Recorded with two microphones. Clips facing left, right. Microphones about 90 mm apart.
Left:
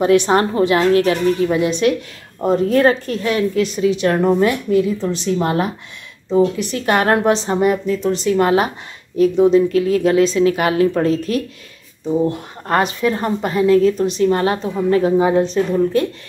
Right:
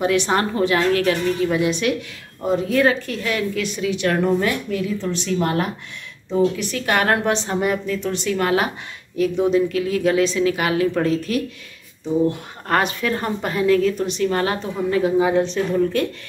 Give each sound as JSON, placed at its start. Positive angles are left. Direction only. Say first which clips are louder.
{"t": 0.0, "sound": "a woman's voice", "louder": "left 5 dB", "side_deg": 25}